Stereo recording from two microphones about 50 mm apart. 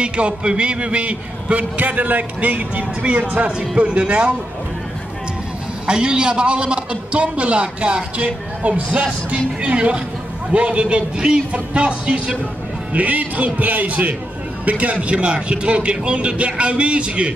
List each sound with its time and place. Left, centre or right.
0.0 s a man's voice: right
5.9 s a man's voice: centre